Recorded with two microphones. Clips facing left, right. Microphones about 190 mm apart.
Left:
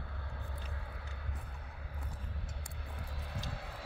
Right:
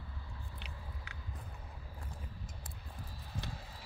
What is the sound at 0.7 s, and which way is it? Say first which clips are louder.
Biting: left 3 dB; 65° left (ahead or behind).